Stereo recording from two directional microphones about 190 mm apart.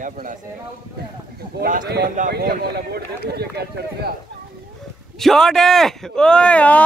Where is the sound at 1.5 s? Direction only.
50° right (ahead or behind).